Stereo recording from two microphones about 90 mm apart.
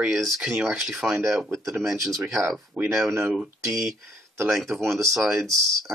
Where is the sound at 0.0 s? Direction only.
Centre (ahead or behind).